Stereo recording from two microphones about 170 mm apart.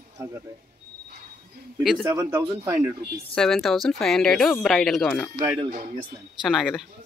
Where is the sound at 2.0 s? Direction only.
20° right (ahead or behind).